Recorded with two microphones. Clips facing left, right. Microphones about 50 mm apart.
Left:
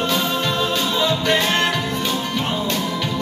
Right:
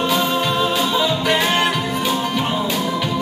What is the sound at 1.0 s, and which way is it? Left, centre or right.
Music, centre.